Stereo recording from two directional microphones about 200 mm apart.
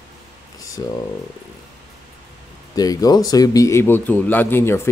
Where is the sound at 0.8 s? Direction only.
20° left (ahead or behind).